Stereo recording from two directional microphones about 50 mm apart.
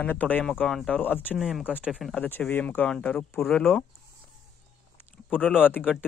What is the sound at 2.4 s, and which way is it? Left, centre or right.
Speech, centre.